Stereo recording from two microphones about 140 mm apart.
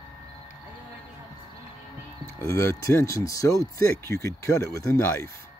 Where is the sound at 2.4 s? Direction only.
20° left (ahead or behind).